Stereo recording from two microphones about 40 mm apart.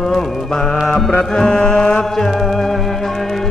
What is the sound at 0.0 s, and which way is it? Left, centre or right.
Mantra, centre.